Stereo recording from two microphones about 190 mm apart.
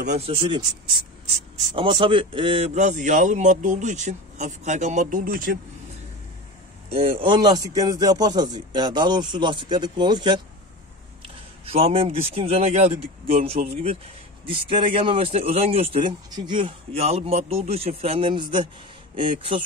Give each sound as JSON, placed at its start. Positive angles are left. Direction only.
{"t": 0.0, "sound": "speech", "side_deg": -35}
{"t": 1.8, "sound": "a man's voice", "side_deg": -25}
{"t": 6.9, "sound": "speech", "side_deg": -30}
{"t": 11.6, "sound": "a man's voice", "side_deg": -30}